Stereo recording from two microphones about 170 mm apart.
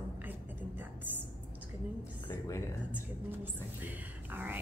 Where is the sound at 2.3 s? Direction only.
20° left (ahead or behind).